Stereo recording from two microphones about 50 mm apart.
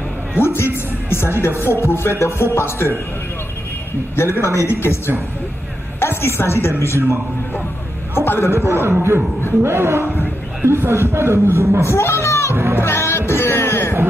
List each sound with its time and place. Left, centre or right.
0.4 s speech: left
4.2 s a woman's voice: left
8.1 s a sound: left
8.5 s speech: right
9.6 s speech: right
11.8 s music: left
12.7 s music: left